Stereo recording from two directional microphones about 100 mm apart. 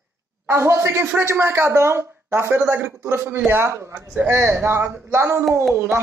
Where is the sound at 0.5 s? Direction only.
25° right (ahead or behind).